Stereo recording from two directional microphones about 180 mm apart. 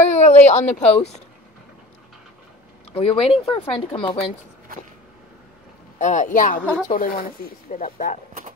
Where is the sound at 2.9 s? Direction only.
35° left (ahead or behind).